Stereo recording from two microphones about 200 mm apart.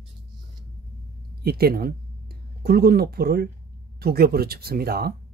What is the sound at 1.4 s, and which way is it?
Speech, 50° right (ahead or behind).